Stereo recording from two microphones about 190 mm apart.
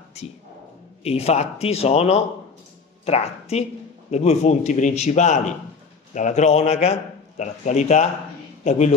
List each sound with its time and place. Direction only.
0.2 s a man's voice: 35° left (ahead or behind)